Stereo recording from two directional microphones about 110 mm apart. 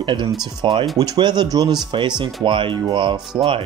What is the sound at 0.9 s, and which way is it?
Speech, 35° right (ahead or behind).